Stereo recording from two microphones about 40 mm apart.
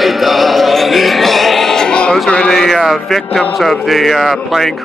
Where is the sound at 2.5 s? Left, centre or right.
Centre.